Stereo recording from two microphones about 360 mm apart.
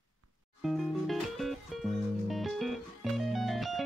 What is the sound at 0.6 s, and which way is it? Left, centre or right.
Music, centre.